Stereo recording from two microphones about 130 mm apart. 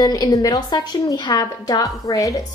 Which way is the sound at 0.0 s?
30° left (ahead or behind).